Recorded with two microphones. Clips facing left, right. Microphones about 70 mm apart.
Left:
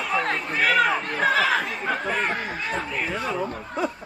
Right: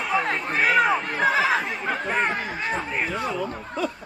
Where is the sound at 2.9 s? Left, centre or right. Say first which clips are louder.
Right 1 dB; right.